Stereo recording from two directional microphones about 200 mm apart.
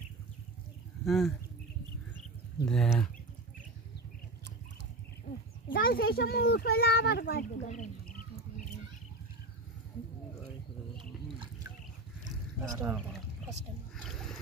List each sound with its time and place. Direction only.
1.0 s speech: centre (ahead or behind)
2.7 s speech: 5° left (ahead or behind)
5.7 s a child's voice: 45° left (ahead or behind)
12.7 s speech: 5° right (ahead or behind)
14.0 s a sound: centre (ahead or behind)